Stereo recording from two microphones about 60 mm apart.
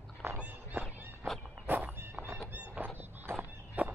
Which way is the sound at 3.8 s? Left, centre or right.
Right.